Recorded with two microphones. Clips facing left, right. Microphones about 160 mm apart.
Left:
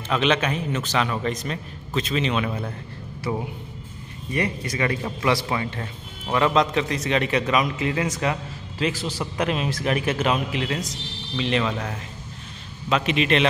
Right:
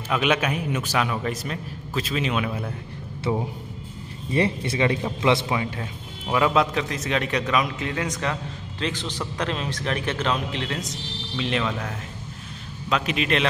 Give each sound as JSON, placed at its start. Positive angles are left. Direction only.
{"t": 0.1, "sound": "a man's voice", "side_deg": -5}
{"t": 4.3, "sound": "speech", "side_deg": -25}
{"t": 5.6, "sound": "a man's voice", "side_deg": -5}